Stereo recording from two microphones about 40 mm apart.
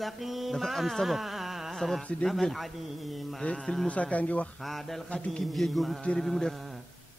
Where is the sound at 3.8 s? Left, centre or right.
Left.